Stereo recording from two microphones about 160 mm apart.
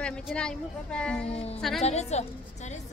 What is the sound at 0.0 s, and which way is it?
A woman's voice, 5° left (ahead or behind).